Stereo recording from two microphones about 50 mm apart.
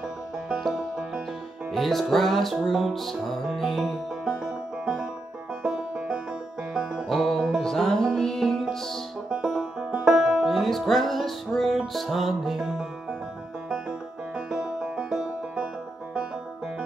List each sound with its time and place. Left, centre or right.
1.7 s music: centre
5.6 s music: centre
7.1 s music: centre
9.5 s music: centre
10.5 s music: centre
13.7 s music: centre